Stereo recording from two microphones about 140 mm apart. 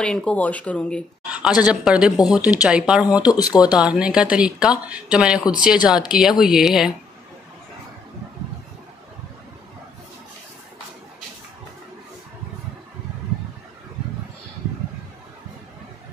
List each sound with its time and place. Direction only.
0.0 s speech: 5° left (ahead or behind)
1.3 s a woman's voice: 5° right (ahead or behind)
3.3 s speech: 25° left (ahead or behind)
3.8 s a woman's voice: 5° right (ahead or behind)